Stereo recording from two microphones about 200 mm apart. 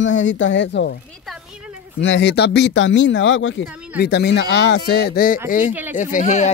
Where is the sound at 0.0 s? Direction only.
70° left (ahead or behind).